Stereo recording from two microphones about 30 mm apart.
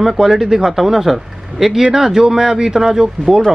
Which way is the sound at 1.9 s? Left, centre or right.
Centre.